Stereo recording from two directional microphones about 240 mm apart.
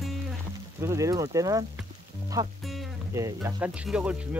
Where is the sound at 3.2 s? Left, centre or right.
Centre.